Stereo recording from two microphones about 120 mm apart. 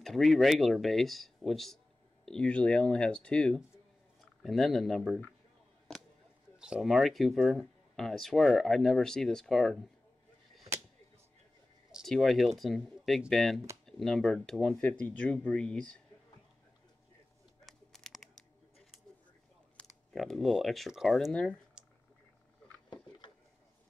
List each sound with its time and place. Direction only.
0.0 s speech: centre (ahead or behind)
6.6 s speech: 5° right (ahead or behind)
11.9 s speech: centre (ahead or behind)
17.6 s a sound: centre (ahead or behind)
19.9 s speech: centre (ahead or behind)
21.8 s clicking: 5° right (ahead or behind)
22.8 s a sound: 40° left (ahead or behind)